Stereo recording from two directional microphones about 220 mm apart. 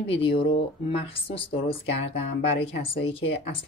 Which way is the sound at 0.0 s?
25° left (ahead or behind).